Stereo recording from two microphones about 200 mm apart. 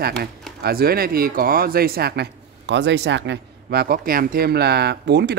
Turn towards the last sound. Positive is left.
turn(degrees=-55)  # may be behind; listen again after turning